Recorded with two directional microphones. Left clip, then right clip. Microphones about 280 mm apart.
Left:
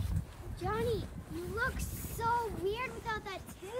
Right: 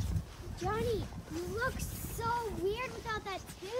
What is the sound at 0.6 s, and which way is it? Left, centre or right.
Speech, centre.